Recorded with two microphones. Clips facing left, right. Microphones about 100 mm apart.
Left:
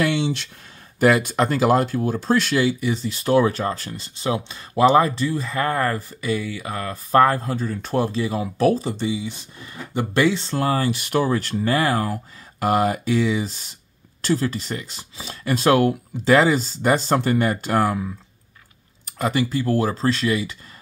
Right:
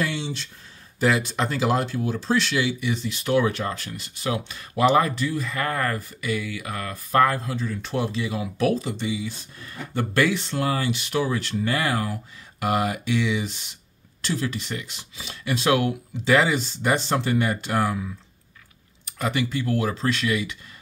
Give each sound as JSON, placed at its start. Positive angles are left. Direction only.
{"t": 0.0, "sound": "a sound", "side_deg": 80}
{"t": 0.9, "sound": "speech", "side_deg": 55}
{"t": 10.5, "sound": "speech", "side_deg": 40}
{"t": 19.0, "sound": "speech", "side_deg": 35}